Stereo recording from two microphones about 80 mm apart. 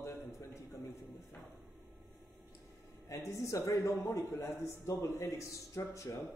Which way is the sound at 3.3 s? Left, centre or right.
Left.